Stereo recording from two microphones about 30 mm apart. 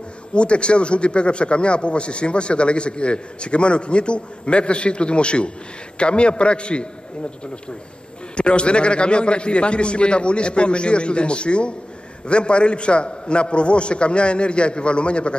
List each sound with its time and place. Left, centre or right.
0.3 s a man's voice: left
8.4 s a man's voice: left